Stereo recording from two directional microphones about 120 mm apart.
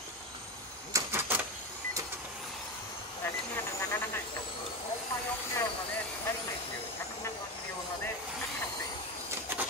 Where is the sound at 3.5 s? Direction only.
20° left (ahead or behind).